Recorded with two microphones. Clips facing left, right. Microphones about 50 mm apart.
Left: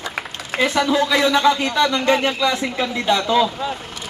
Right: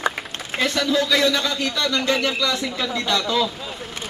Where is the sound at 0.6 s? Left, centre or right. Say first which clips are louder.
Left 3 dB; left.